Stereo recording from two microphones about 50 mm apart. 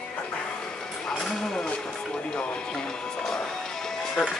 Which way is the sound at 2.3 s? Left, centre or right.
Left.